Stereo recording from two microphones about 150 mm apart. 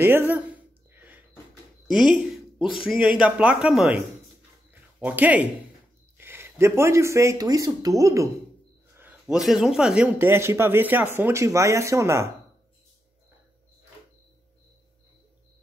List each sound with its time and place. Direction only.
0.0 s speech: 15° right (ahead or behind)
0.9 s a sound: 10° right (ahead or behind)
1.9 s speech: 5° right (ahead or behind)
2.6 s speech: 35° left (ahead or behind)
2.9 s speech: 5° right (ahead or behind); by 8.3 s 20° right (ahead or behind)
8.9 s a sound: 10° right (ahead or behind)
9.4 s speech: 5° right (ahead or behind)
10.1 s speech: 15° right (ahead or behind)